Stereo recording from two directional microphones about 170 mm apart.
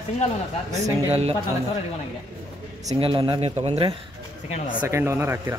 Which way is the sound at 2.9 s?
30° right (ahead or behind).